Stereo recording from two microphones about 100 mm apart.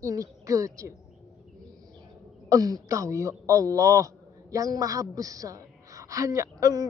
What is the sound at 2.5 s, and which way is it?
A man's voice, 35° right (ahead or behind).